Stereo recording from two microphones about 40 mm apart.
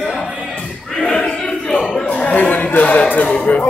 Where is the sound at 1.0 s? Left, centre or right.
Centre.